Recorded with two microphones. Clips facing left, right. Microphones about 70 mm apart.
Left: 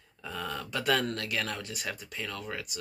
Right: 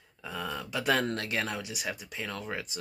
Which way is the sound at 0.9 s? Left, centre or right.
Right.